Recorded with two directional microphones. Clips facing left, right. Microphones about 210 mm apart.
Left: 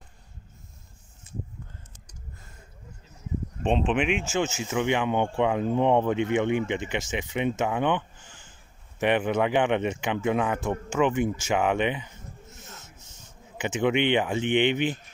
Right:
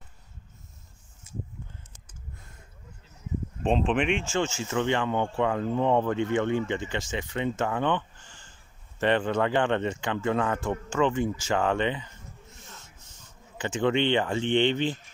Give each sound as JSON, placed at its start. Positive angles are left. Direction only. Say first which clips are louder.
{"t": 3.6, "sound": "speech", "louder": "even", "side_deg": 0}
{"t": 4.5, "sound": "speech", "louder": "left 1 dB", "side_deg": 15}
{"t": 12.6, "sound": "a sound", "louder": "left 3 dB", "side_deg": 20}